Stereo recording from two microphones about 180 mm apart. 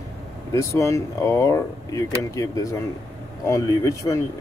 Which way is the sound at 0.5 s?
15° left (ahead or behind).